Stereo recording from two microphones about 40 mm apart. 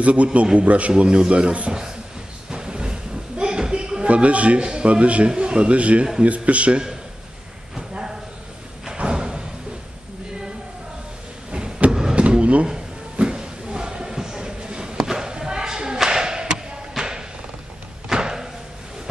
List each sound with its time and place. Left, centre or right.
0.0 s speech: right
1.0 s a man's voice: right
1.7 s a man's voice: centre
2.5 s a sound: right
4.1 s speech: right
4.6 s a man's voice: right
7.7 s a sound: centre
8.9 s slam: right
11.9 s vehicle: centre
12.2 s a sound: right
18.0 s thump: centre